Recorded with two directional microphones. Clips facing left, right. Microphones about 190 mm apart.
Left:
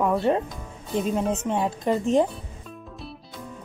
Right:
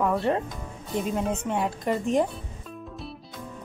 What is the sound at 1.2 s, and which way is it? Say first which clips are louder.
Speech: left 3 dB; 5° left (ahead or behind).